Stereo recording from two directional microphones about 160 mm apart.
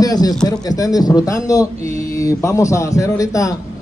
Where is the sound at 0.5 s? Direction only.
25° left (ahead or behind).